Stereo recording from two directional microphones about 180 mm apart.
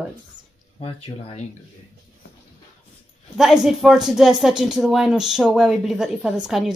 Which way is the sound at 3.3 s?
5° right (ahead or behind).